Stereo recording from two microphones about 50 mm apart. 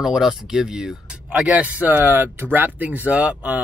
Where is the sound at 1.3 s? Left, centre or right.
Right.